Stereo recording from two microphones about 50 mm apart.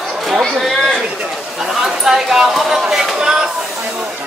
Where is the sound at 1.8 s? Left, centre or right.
Centre.